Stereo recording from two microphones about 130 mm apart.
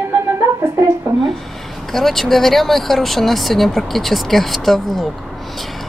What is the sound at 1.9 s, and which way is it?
Speech, centre (ahead or behind).